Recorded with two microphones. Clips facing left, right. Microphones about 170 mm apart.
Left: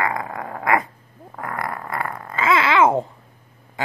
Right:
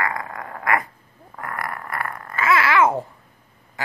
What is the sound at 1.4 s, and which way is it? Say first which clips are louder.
Babbling: left 2 dB; 20° left (ahead or behind).